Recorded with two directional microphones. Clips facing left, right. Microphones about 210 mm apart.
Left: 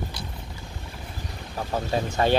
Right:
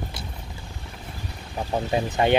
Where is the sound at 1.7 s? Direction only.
15° right (ahead or behind).